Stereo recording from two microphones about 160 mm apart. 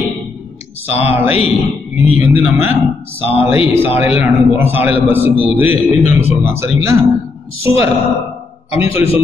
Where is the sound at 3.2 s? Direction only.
35° left (ahead or behind).